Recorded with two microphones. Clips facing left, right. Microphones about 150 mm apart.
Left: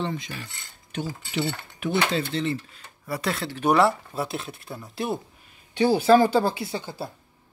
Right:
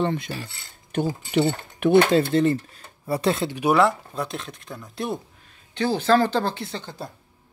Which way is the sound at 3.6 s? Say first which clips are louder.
Right 1 dB; centre (ahead or behind).